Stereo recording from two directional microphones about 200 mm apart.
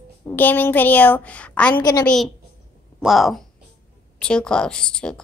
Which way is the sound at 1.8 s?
20° left (ahead or behind).